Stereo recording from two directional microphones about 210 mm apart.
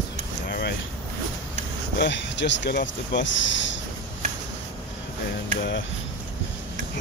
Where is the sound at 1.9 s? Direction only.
60° left (ahead or behind).